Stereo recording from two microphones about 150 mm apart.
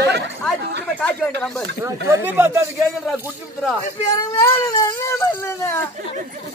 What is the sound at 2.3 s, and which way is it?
Speech, 15° right (ahead or behind).